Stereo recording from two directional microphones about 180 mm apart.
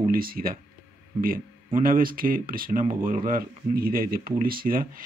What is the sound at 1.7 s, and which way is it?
Speech, 50° right (ahead or behind).